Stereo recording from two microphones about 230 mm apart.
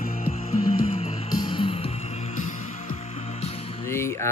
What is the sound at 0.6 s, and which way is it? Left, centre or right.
Music, left.